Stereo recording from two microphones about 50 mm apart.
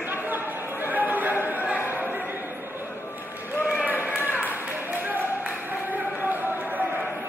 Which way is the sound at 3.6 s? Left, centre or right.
Right.